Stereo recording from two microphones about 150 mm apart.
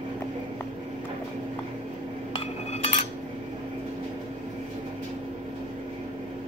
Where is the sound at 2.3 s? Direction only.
45° left (ahead or behind).